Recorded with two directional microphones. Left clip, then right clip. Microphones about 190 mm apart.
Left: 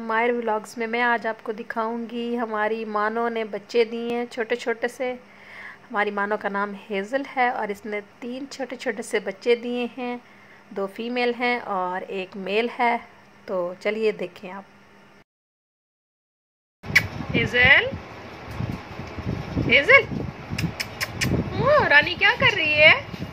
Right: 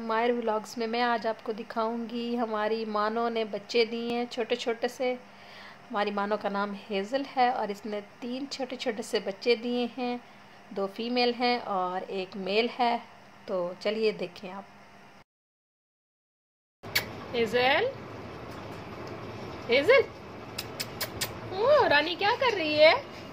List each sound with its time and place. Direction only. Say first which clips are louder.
0.0 s a woman's voice: left 5 dB; 5° left (ahead or behind)
2.0 s a woman's voice: left 5 dB; 35° left (ahead or behind)
2.3 s a woman's voice: left 4 dB; 5° left (ahead or behind)
16.9 s a sound: left 9 dB; 5° right (ahead or behind)
19.7 s a woman's voice: left 6 dB; 5° right (ahead or behind)
20.7 s a sound: left 4 dB; centre (ahead or behind)
22.2 s a woman's voice: left 7 dB; 5° right (ahead or behind)